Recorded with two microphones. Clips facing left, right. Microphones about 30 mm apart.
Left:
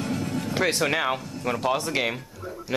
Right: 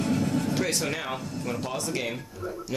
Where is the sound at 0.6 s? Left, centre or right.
Left.